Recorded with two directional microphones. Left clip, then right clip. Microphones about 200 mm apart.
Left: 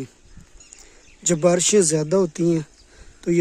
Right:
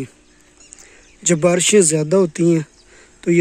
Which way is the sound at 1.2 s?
5° left (ahead or behind).